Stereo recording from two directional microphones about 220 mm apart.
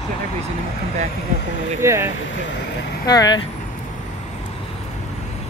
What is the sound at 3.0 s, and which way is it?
Speech, 15° left (ahead or behind).